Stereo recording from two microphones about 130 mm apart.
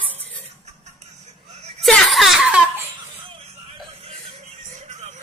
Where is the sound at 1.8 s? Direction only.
5° left (ahead or behind).